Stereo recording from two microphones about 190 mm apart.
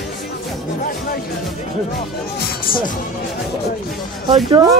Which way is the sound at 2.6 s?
50° left (ahead or behind).